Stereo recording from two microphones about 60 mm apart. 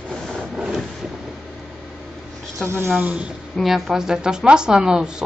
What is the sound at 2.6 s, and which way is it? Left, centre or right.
Speech, right.